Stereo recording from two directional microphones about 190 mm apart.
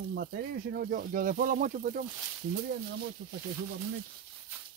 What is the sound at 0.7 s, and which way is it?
Speech, 50° right (ahead or behind).